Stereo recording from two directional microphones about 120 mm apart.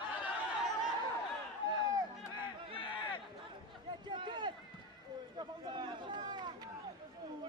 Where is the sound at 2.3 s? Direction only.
45° left (ahead or behind).